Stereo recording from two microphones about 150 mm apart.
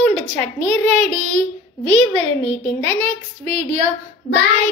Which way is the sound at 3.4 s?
45° right (ahead or behind).